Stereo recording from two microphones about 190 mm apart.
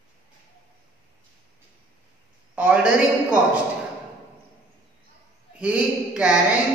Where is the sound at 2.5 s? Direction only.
5° right (ahead or behind).